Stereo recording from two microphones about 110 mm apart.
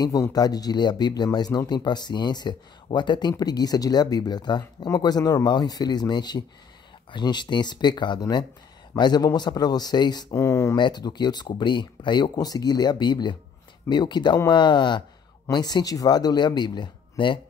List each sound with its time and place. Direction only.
0.0 s speech: 35° left (ahead or behind)
10.3 s speech: 25° left (ahead or behind)
10.8 s speech: 45° left (ahead or behind)